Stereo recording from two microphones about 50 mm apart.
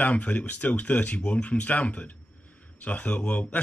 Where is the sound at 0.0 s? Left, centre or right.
Left.